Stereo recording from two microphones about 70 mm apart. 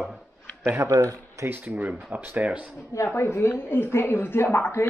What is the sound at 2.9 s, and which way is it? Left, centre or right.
A woman's voice, left.